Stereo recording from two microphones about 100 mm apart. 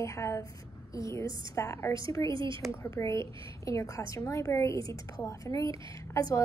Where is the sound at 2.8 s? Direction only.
30° left (ahead or behind).